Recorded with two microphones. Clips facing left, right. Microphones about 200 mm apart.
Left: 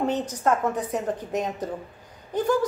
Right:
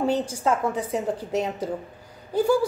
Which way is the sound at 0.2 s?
10° right (ahead or behind).